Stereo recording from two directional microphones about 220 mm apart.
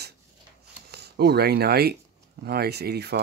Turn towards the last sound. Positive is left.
turn(degrees=-45)  # may be behind; listen again after turning